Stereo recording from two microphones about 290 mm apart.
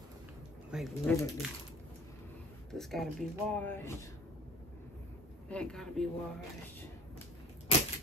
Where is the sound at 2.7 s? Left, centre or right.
Centre.